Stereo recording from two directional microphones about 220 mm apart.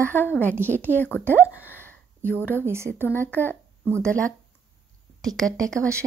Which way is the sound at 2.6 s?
10° right (ahead or behind).